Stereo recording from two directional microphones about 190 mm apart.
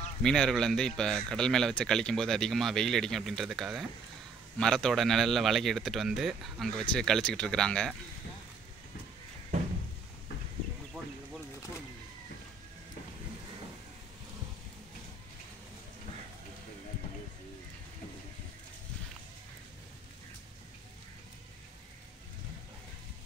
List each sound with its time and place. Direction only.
0.2 s speech: 5° left (ahead or behind)